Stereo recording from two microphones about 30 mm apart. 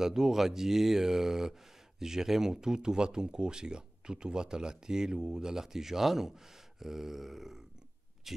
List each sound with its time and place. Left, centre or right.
0.0 s a man's voice: centre